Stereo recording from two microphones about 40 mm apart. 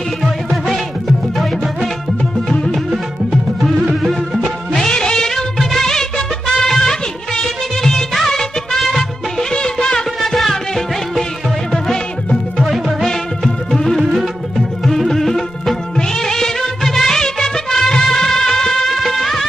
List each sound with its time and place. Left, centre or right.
0.2 s music: centre
3.9 s music of bollywood: centre
4.8 s music of bollywood: centre
9.4 s music: centre
10.2 s music: centre
11.7 s music: centre
12.6 s music: centre
13.0 s music: centre
16.0 s music of bollywood: centre